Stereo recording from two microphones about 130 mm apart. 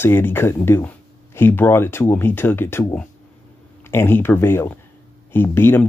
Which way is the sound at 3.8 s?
20° left (ahead or behind).